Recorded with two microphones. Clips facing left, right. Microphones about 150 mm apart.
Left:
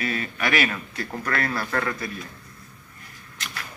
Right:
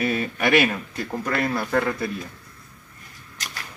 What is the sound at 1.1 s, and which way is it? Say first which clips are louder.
Speech: right 3 dB; 20° right (ahead or behind).